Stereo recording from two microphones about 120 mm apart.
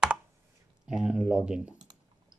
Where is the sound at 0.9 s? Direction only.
5° right (ahead or behind).